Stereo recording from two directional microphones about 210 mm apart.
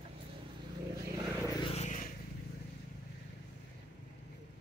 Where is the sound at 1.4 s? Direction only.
20° left (ahead or behind).